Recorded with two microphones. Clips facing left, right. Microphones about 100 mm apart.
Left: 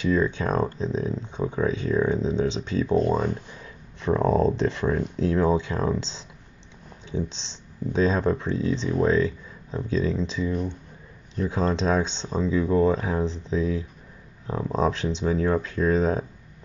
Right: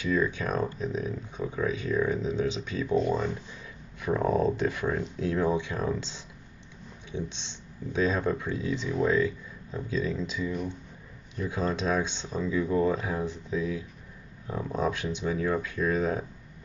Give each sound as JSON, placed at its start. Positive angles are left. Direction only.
{"t": 0.0, "sound": "speech", "side_deg": 30}
{"t": 3.0, "sound": "speech", "side_deg": 45}
{"t": 4.0, "sound": "speech", "side_deg": 30}
{"t": 11.4, "sound": "speech", "side_deg": 30}